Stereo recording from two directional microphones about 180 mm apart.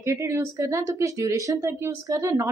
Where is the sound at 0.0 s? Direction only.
15° right (ahead or behind).